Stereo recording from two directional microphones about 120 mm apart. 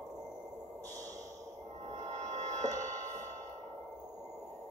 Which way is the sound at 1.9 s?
75° right (ahead or behind).